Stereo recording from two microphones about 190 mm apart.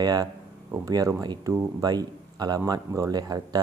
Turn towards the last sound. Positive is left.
turn(degrees=-20)  # may be behind; listen again after turning